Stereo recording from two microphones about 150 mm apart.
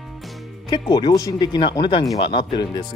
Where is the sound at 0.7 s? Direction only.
30° left (ahead or behind).